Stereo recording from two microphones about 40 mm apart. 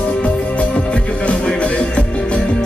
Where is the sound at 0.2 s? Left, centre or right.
Left.